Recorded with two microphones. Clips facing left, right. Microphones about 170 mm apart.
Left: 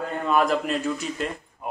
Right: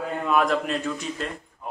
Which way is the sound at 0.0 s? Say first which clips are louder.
Even; centre (ahead or behind).